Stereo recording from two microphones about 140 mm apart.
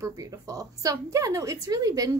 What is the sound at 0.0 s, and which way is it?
Speech, 25° right (ahead or behind).